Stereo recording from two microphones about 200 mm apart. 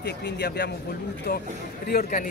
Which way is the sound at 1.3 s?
45° left (ahead or behind).